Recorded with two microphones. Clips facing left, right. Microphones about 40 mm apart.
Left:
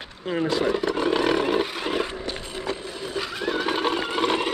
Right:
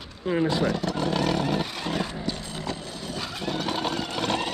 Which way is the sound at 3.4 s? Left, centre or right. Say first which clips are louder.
Left 4 dB; centre.